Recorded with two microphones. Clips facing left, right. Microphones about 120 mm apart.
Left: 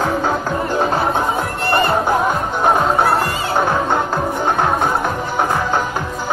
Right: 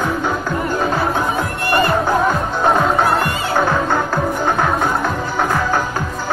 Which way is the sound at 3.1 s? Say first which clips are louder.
Even; 20° left (ahead or behind).